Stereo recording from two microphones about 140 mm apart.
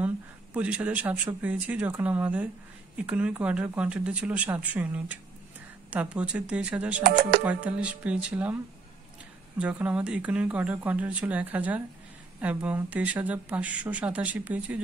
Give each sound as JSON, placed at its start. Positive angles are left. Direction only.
{"t": 0.0, "sound": "speech", "side_deg": -10}
{"t": 7.0, "sound": "speech", "side_deg": -90}
{"t": 7.4, "sound": "speech", "side_deg": -10}
{"t": 9.6, "sound": "speech", "side_deg": -10}